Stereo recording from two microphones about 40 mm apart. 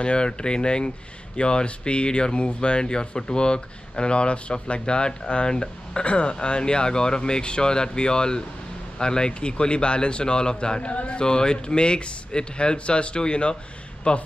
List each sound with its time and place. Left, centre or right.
0.0 s speech: left